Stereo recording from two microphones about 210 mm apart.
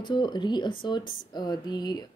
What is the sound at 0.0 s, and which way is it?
Speech, 20° left (ahead or behind).